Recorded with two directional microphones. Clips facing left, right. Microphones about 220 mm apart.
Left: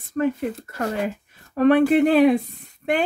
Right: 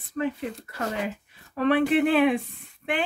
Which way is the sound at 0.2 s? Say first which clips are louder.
Left 6 dB; 45° left (ahead or behind).